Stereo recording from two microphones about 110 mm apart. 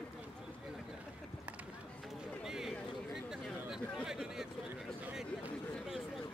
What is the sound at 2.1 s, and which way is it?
Run, 5° right (ahead or behind).